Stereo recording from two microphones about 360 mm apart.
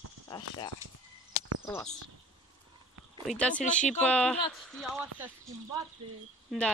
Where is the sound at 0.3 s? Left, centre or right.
Centre.